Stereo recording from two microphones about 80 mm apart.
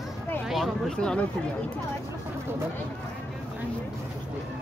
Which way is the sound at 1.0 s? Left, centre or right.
Centre.